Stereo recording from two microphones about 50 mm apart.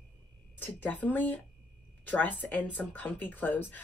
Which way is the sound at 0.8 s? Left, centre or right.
Left.